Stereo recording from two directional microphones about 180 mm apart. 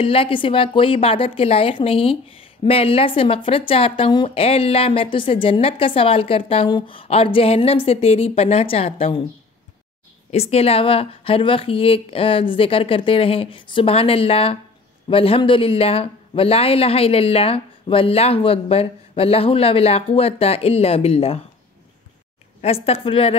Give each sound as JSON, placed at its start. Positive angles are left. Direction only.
{"t": 0.0, "sound": "a woman's voice", "side_deg": 30}
{"t": 10.3, "sound": "a woman's voice", "side_deg": 35}
{"t": 22.6, "sound": "a woman's voice", "side_deg": 35}